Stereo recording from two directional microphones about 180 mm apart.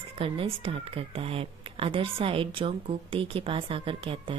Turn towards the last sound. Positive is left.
turn(degrees=-30)  # may be behind; listen again after turning